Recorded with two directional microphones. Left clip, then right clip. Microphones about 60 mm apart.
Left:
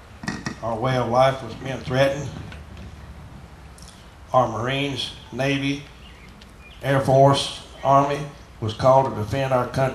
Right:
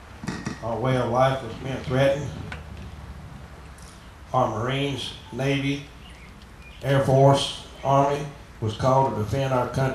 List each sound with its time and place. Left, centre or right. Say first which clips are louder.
0.2 s speech: left 3 dB; left
4.3 s speech: left 3 dB; left
6.8 s speech: left 3 dB; left